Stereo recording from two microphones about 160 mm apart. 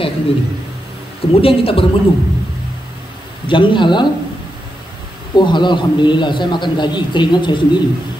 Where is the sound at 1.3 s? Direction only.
35° left (ahead or behind).